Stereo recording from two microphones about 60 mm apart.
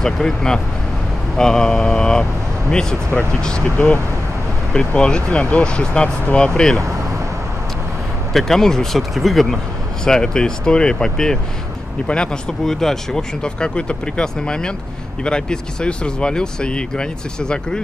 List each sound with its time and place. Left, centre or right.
0.0 s speech: centre
3.7 s speech: left
4.7 s speech: centre
8.3 s speech: centre